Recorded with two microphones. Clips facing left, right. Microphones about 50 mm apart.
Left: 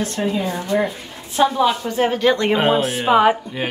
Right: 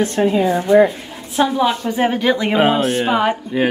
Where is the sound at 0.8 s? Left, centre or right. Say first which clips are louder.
Right 5 dB; centre.